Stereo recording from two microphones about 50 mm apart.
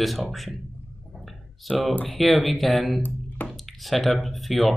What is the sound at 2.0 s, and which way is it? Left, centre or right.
Speech, centre.